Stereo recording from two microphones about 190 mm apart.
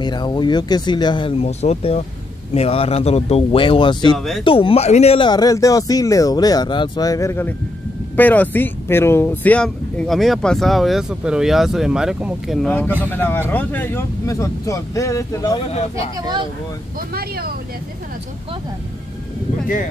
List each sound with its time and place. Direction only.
0.0 s speech: 25° left (ahead or behind)
17.1 s speech: 55° right (ahead or behind)